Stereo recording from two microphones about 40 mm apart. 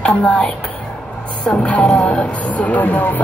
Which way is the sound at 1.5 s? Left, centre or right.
Left.